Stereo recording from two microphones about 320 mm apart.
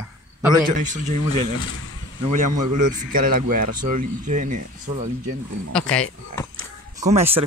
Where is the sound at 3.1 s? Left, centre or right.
Right.